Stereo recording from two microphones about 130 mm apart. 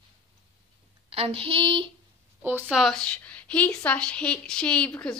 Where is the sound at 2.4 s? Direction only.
15° right (ahead or behind).